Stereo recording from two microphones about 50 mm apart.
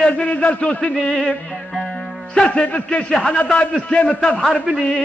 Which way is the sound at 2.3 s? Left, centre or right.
Centre.